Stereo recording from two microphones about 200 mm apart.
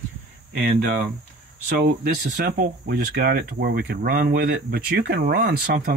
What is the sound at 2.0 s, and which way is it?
Speech, 55° right (ahead or behind).